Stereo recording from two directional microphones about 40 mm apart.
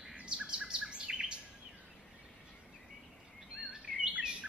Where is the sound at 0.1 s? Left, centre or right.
Right.